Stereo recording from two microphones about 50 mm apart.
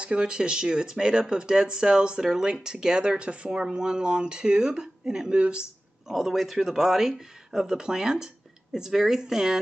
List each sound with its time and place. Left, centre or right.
0.0 s speech: centre
6.0 s speech: centre